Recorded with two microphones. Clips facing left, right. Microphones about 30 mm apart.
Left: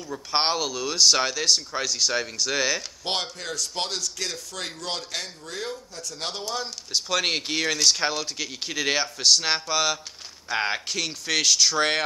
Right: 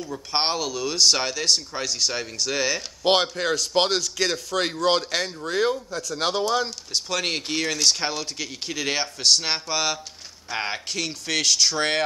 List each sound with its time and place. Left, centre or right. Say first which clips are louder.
0.3 s speech: left 1 dB; centre
3.0 s a man's voice: right 8 dB; right
6.9 s speech: left 5 dB; centre
10.5 s speech: left 2 dB; centre